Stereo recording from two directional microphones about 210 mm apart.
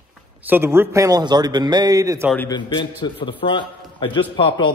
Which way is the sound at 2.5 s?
20° left (ahead or behind).